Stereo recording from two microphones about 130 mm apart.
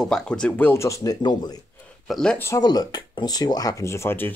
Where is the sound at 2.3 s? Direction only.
20° left (ahead or behind).